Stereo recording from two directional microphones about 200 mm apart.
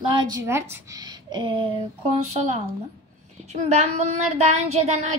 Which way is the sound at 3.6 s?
30° right (ahead or behind).